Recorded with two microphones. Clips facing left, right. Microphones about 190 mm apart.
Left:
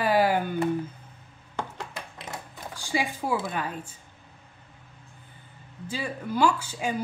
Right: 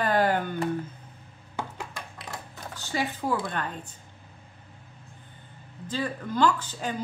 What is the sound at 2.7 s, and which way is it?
A woman's voice, 10° left (ahead or behind).